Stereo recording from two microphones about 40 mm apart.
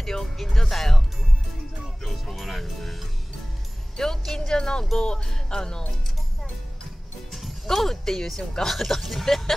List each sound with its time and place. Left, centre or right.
0.0 s speech: centre
2.0 s speech: centre
7.6 s speech: centre